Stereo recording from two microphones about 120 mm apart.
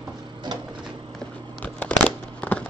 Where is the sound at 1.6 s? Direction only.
15° left (ahead or behind).